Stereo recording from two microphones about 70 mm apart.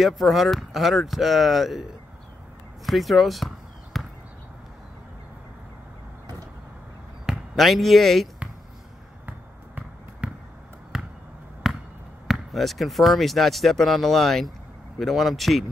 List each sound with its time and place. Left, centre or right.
0.0 s speech: centre
2.9 s basketball bounce: centre
7.2 s speech: centre
10.2 s basketball bounce: centre
12.3 s speech: centre